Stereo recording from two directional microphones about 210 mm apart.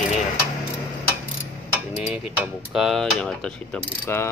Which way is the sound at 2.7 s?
Centre (ahead or behind).